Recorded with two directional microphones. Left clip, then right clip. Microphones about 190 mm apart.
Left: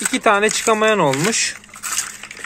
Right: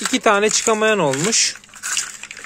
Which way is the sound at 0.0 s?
30° right (ahead or behind).